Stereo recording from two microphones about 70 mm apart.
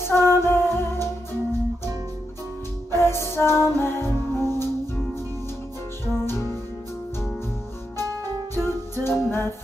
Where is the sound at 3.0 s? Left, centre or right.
Left.